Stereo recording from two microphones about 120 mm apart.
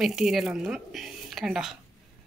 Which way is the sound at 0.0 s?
Centre (ahead or behind).